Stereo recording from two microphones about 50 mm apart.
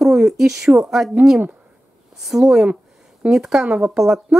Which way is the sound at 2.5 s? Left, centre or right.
Centre.